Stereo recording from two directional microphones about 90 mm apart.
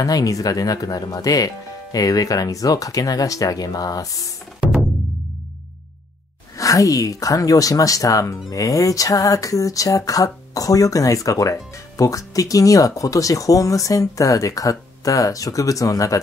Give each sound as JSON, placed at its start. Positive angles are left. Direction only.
{"t": 0.0, "sound": "speech", "side_deg": 40}
{"t": 6.5, "sound": "speech", "side_deg": 40}